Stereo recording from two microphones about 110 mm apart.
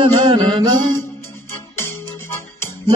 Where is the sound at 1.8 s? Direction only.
25° left (ahead or behind).